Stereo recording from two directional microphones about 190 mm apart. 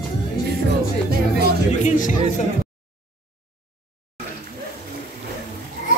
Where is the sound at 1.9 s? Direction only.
45° left (ahead or behind).